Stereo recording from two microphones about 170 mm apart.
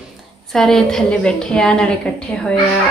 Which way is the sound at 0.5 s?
5° left (ahead or behind).